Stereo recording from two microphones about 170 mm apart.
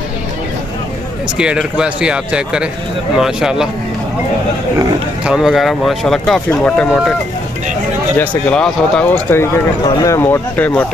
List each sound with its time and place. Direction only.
1.4 s speech: 5° right (ahead or behind)
5.2 s speech: 5° right (ahead or behind)
8.2 s speech: 5° left (ahead or behind)